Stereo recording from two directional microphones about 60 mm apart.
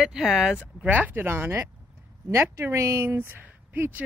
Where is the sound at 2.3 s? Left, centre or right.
Right.